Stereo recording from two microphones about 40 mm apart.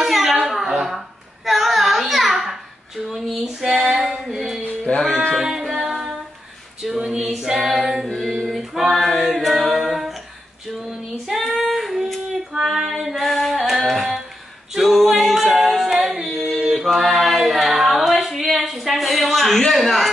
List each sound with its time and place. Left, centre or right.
0.0 s a sound: centre
3.7 s female singing: centre
4.3 s music: centre
4.9 s music: left
5.3 s music: centre
7.1 s female singing: centre
8.3 s a capella: centre
10.8 s child singing: centre
11.7 s a sound: centre
12.6 s female singing: centre
13.7 s music: centre
14.7 s a capella: centre
18.3 s a sound: centre
19.7 s speech: centre